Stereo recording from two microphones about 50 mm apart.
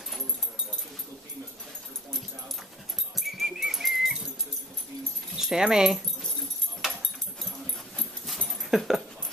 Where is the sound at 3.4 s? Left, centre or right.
Centre.